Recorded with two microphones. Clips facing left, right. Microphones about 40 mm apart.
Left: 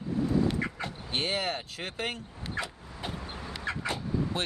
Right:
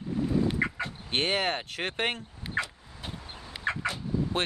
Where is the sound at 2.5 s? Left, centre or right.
Centre.